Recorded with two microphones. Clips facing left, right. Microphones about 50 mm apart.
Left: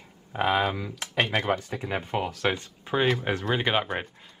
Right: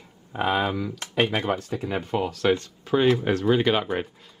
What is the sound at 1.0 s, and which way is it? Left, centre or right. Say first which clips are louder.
Speech: right 1 dB; centre.